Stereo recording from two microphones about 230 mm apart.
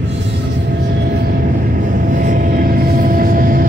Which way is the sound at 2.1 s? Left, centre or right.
Right.